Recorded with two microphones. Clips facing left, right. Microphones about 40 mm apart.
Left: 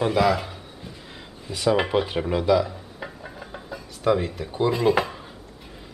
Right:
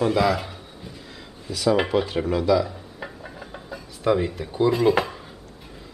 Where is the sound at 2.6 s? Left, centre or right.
Centre.